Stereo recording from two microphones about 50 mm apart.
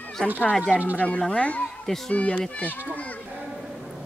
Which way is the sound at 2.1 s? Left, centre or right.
Left.